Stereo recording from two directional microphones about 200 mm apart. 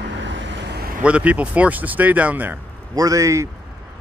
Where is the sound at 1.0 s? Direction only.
5° right (ahead or behind).